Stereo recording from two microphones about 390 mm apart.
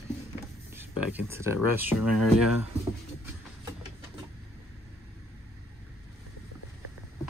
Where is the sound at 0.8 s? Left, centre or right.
Centre.